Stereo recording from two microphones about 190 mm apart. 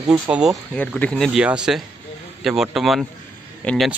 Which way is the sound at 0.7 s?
5° left (ahead or behind).